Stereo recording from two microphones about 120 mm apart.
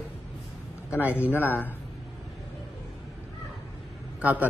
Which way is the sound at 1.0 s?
15° right (ahead or behind).